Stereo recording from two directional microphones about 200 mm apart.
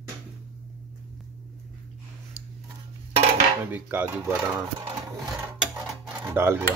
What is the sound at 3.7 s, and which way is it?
Speech, 10° right (ahead or behind).